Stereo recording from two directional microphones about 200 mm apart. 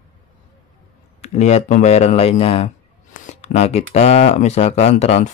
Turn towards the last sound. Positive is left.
turn(degrees=35)  # may be behind; listen again after turning